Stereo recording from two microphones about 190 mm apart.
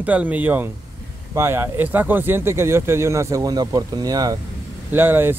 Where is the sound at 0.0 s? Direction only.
10° right (ahead or behind).